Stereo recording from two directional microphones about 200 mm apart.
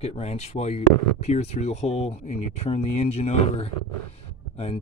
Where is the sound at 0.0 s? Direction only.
30° left (ahead or behind).